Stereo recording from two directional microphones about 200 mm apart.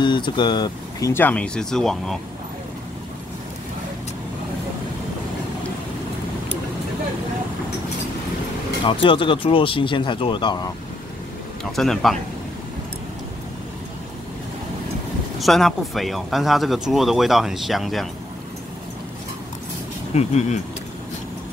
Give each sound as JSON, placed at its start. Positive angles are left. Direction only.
{"t": 0.0, "sound": "speech", "side_deg": 25}
{"t": 9.0, "sound": "speech", "side_deg": 25}
{"t": 11.7, "sound": "speech", "side_deg": 0}
{"t": 15.3, "sound": "speech", "side_deg": 0}
{"t": 20.2, "sound": "speech", "side_deg": 35}